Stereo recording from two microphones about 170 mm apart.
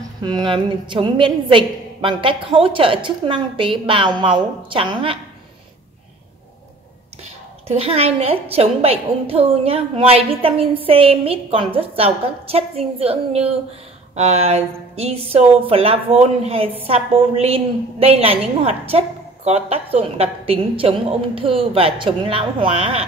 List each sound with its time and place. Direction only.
0.2 s a woman's voice: 25° right (ahead or behind)
7.6 s a woman's voice: 35° right (ahead or behind)